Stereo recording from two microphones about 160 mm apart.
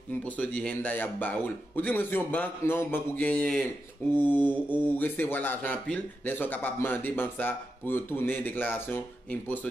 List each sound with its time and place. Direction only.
0.2 s a man's voice: 10° left (ahead or behind)